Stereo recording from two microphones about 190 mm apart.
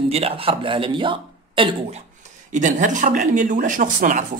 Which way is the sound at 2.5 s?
40° right (ahead or behind).